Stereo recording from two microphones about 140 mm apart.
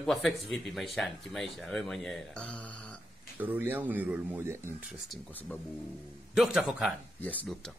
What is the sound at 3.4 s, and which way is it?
Speech, 15° right (ahead or behind).